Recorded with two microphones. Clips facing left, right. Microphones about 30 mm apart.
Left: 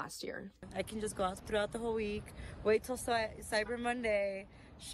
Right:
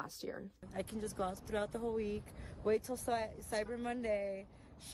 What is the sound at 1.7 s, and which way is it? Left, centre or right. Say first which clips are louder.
Speech: left 2 dB; left.